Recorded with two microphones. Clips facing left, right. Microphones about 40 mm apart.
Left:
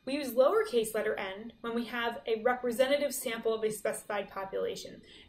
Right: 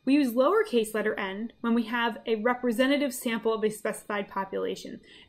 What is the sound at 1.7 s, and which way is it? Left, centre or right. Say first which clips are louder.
Speech: right 6 dB; right.